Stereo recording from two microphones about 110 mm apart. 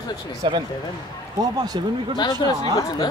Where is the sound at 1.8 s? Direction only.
45° right (ahead or behind).